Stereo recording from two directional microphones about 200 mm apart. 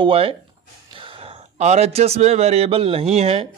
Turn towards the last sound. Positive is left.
turn(degrees=-30)  # may be behind; listen again after turning